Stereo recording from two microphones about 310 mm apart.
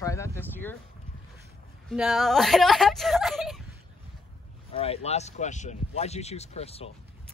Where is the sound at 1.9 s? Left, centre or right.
Centre.